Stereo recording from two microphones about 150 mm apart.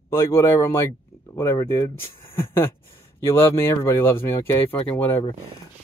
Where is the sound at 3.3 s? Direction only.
15° left (ahead or behind).